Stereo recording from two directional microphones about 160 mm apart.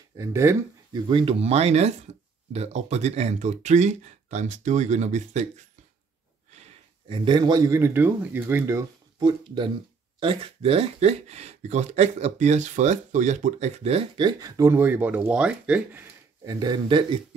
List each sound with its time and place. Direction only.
0.2 s speech: 15° right (ahead or behind); by 5.5 s 45° right (ahead or behind)
6.5 s a sound: 45° right (ahead or behind)
7.2 s speech: 25° right (ahead or behind)
10.2 s speech: 35° right (ahead or behind); by 16.1 s 10° right (ahead or behind)
16.4 s speech: 25° right (ahead or behind)